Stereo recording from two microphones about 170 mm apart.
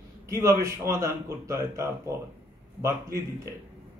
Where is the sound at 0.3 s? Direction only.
15° right (ahead or behind).